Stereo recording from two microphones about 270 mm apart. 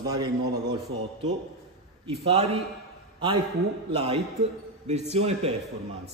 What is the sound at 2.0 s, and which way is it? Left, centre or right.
Speech, right.